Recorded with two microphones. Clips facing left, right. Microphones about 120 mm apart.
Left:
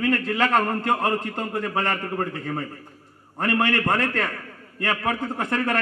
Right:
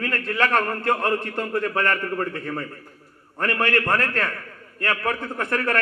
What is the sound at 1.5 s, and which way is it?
A man's voice, 25° left (ahead or behind).